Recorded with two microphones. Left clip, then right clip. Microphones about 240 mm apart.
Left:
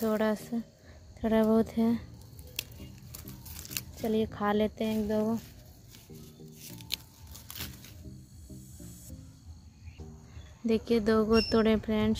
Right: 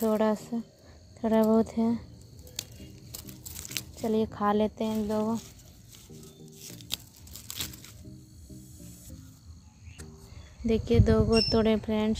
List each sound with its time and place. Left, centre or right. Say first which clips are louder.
0.0 s speech: right 3 dB; centre
4.0 s speech: right 2 dB; centre
6.6 s music: even; centre
10.7 s speech: right 1 dB; centre